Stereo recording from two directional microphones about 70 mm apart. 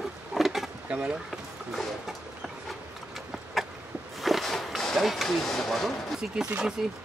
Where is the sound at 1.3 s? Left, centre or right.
Centre.